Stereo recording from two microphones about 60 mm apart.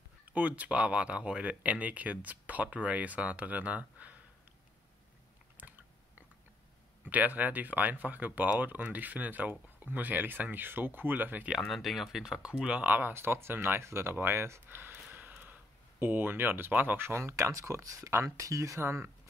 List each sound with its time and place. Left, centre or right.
0.3 s speech: right
5.6 s chewing: right
7.1 s speech: right
11.6 s speech: centre
12.2 s speech: centre
12.8 s speech: right